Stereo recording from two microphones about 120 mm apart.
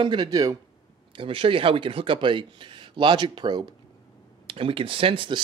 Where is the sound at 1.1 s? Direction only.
50° right (ahead or behind).